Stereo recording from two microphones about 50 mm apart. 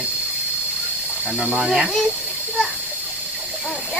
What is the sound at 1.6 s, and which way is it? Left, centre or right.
Speech, centre.